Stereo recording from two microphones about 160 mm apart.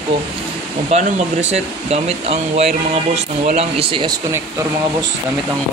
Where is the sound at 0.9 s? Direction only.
45° right (ahead or behind).